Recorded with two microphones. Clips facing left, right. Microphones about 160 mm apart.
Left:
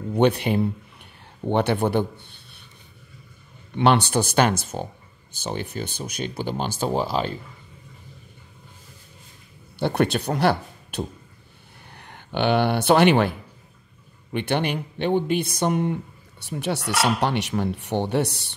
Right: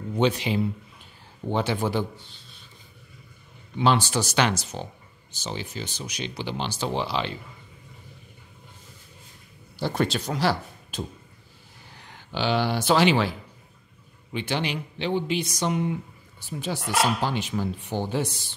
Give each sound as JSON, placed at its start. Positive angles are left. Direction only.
{"t": 0.2, "sound": "speech", "side_deg": 55}
{"t": 3.7, "sound": "speech", "side_deg": 60}
{"t": 9.8, "sound": "speech", "side_deg": 60}
{"t": 16.4, "sound": "speech", "side_deg": 70}